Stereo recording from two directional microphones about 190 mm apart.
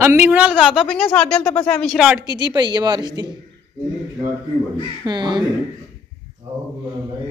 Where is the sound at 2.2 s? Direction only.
20° right (ahead or behind).